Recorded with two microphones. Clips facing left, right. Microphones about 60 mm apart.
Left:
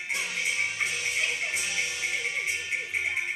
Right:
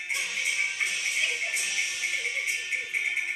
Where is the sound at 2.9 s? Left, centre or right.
Centre.